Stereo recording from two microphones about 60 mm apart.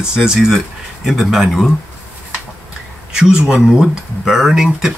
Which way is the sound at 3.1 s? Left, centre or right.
Centre.